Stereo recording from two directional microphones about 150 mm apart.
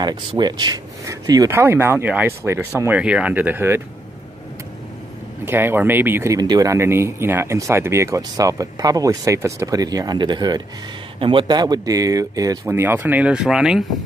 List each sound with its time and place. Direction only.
0.0 s speech: 30° right (ahead or behind)
5.4 s speech: 15° right (ahead or behind)